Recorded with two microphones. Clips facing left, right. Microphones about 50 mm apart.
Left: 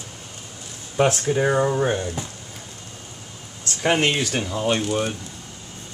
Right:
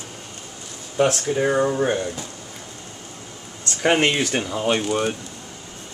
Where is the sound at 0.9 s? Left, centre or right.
Centre.